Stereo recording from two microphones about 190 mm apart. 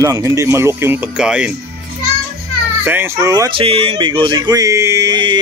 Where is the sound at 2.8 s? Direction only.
10° right (ahead or behind).